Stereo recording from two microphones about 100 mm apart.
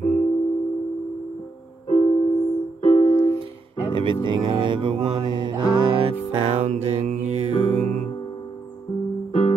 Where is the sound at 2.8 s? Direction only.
70° left (ahead or behind).